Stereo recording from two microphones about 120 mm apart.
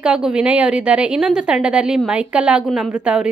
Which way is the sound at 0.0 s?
5° right (ahead or behind).